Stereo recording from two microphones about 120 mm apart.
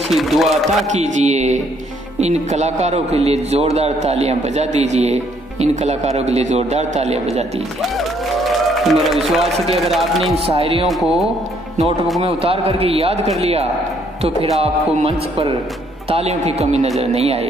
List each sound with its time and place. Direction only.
0.1 s a man's voice: centre (ahead or behind)
0.8 s a man's voice: 80° right; by 7.6 s 65° right (ahead or behind)
8.5 s a man's voice: centre (ahead or behind)
10.4 s a man's voice: 55° right (ahead or behind)
10.9 s a man's voice: centre (ahead or behind)
12.2 s a man's voice: 55° right (ahead or behind)
14.6 s music: 55° right (ahead or behind)
16.1 s a man's voice: 60° right (ahead or behind)